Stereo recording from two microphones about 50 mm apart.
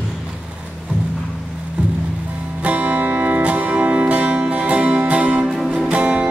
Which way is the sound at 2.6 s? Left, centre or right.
Right.